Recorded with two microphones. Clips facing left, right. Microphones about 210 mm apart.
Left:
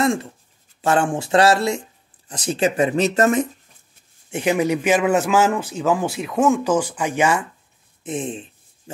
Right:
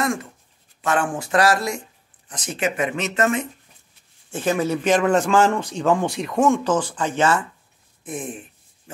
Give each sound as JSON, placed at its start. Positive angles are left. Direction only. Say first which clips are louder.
{"t": 0.0, "sound": "speech", "louder": "left 4 dB", "side_deg": 30}
{"t": 4.3, "sound": "a man's voice", "louder": "left 2 dB", "side_deg": 15}
{"t": 8.0, "sound": "a sound", "louder": "left 4 dB", "side_deg": 25}